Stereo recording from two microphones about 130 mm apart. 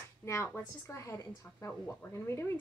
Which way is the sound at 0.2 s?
20° left (ahead or behind).